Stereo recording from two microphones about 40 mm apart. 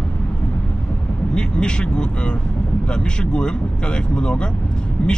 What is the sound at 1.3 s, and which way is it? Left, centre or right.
Speech, left.